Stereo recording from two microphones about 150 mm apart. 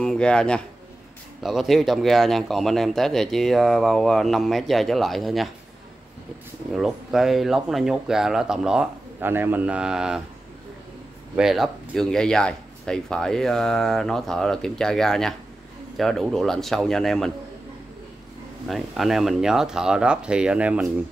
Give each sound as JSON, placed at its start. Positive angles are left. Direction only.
{"t": 0.0, "sound": "speech", "side_deg": 5}
{"t": 6.7, "sound": "speech", "side_deg": 0}
{"t": 11.3, "sound": "speech", "side_deg": 0}
{"t": 18.7, "sound": "speech", "side_deg": 0}